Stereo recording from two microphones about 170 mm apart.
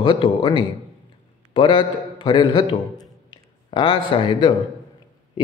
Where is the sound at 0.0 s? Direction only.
30° left (ahead or behind).